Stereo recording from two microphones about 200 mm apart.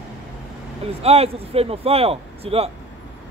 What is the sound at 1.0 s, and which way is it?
Speech, 30° right (ahead or behind).